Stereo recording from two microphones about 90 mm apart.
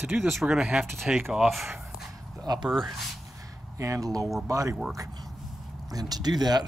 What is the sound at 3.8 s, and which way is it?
Speech, 40° right (ahead or behind).